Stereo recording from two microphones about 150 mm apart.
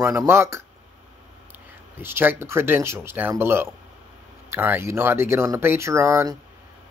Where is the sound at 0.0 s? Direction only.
15° right (ahead or behind).